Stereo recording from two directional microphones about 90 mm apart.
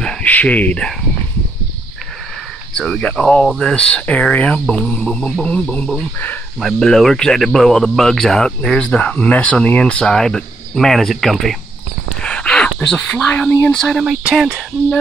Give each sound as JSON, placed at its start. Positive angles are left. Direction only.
{"t": 0.0, "sound": "cricket", "side_deg": 15}
{"t": 2.7, "sound": "insect", "side_deg": 5}
{"t": 6.6, "sound": "speech", "side_deg": 5}
{"t": 12.2, "sound": "a sound", "side_deg": 10}
{"t": 13.7, "sound": "speech", "side_deg": 5}